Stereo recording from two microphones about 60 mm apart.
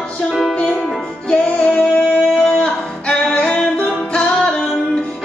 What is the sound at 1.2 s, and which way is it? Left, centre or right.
Music, centre.